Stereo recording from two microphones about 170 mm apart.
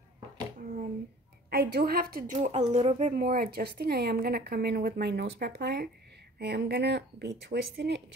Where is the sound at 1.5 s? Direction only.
65° right (ahead or behind); by 3.2 s 40° right (ahead or behind).